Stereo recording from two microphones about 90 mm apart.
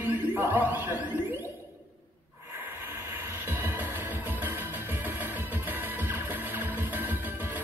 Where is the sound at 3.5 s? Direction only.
25° right (ahead or behind).